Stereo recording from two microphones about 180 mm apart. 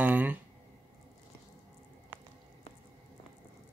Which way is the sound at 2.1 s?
10° right (ahead or behind).